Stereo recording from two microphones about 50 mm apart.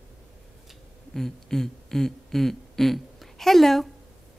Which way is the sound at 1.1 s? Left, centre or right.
Centre.